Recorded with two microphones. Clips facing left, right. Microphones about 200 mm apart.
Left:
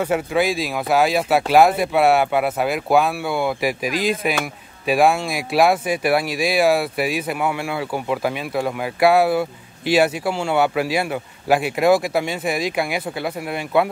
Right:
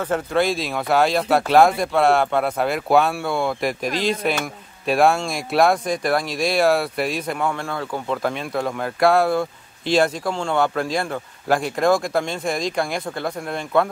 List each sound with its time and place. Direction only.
0.0 s speech: 10° left (ahead or behind)